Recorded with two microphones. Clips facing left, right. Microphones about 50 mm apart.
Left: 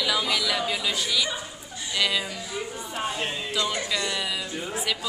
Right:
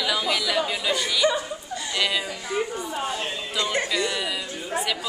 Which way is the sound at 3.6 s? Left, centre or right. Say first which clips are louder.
Right 4 dB; right.